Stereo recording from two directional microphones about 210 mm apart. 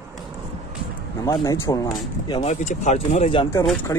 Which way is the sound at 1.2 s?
15° left (ahead or behind).